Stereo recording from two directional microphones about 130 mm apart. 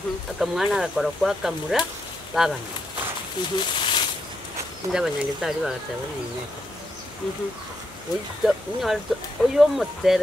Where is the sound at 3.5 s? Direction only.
40° left (ahead or behind).